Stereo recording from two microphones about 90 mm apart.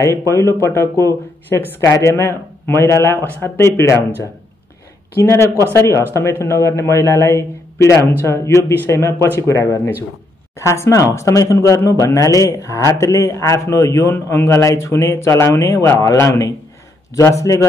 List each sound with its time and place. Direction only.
0.3 s a man's voice: 30° left (ahead or behind)
5.1 s a man's voice: 30° left (ahead or behind)